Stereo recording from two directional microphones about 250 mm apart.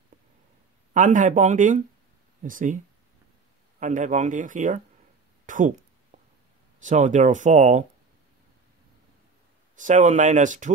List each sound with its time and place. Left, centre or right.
0.9 s speech: right
3.8 s speech: right
5.5 s a sound: right
6.8 s speech: right
9.8 s speech: right